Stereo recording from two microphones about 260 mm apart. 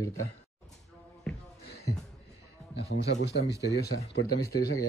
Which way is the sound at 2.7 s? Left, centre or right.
Left.